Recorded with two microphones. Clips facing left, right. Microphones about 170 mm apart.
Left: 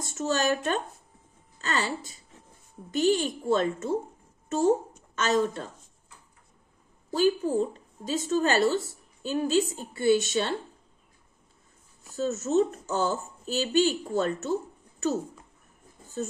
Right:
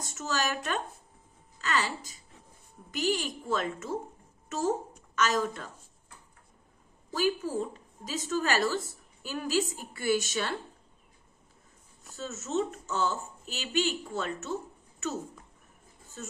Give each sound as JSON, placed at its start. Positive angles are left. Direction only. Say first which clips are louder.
{"t": 0.1, "sound": "a woman's voice", "louder": "left 6 dB", "side_deg": 30}
{"t": 7.1, "sound": "a woman's voice", "louder": "left 5 dB", "side_deg": 30}
{"t": 12.2, "sound": "speech", "louder": "left 7 dB", "side_deg": 40}